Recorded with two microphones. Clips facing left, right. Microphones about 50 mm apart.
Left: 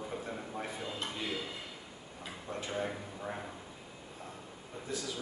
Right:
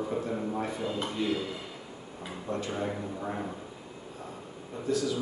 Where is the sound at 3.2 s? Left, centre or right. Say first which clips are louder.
Right 6 dB; centre.